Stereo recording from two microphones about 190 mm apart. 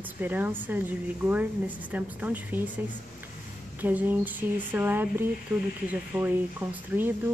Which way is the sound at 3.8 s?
10° right (ahead or behind).